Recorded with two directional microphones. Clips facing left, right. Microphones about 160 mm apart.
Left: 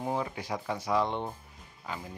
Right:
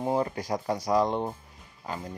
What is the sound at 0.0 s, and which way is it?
Speech, 40° right (ahead or behind).